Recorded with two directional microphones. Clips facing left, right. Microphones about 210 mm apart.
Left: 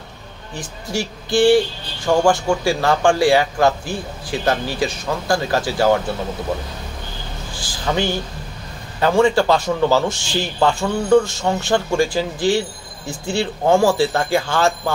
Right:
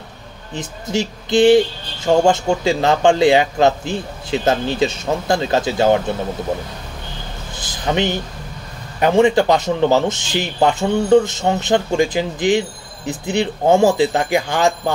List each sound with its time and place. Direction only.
0.6 s a man's voice: 20° right (ahead or behind)
7.5 s a sound: 20° right (ahead or behind)
9.0 s a man's voice: 20° right (ahead or behind)